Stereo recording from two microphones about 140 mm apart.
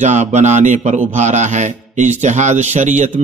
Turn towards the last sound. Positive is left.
turn(degrees=-60)  # may be behind; listen again after turning